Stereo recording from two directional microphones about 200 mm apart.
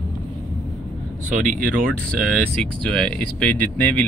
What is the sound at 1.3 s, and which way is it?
Speech, 40° right (ahead or behind).